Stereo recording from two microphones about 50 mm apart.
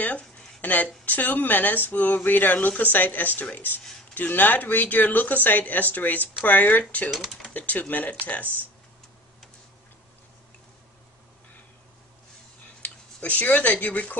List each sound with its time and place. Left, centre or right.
0.6 s speech: left
7.1 s speech: centre
7.5 s speech: left
12.8 s speech: left